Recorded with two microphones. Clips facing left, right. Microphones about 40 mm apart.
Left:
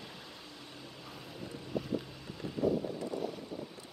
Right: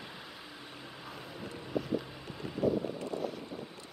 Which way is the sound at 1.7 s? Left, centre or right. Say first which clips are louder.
Right 2 dB; centre.